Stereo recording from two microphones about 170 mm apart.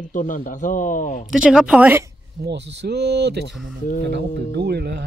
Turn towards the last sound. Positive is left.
turn(degrees=-75)  # may be behind; listen again after turning